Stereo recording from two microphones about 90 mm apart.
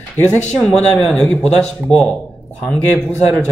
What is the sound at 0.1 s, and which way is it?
Speech, 20° left (ahead or behind).